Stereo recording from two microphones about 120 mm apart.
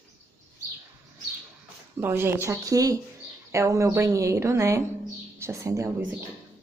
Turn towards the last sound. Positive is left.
turn(degrees=-25)  # may be behind; listen again after turning